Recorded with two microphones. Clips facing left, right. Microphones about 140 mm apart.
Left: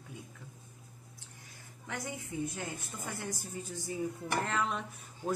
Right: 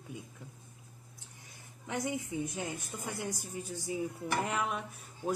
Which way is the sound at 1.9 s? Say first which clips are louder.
Right 5 dB; 20° right (ahead or behind).